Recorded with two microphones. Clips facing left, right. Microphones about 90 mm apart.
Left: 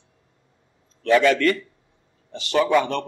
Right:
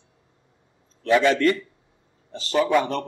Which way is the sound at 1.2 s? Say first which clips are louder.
Left 1 dB; 25° right (ahead or behind).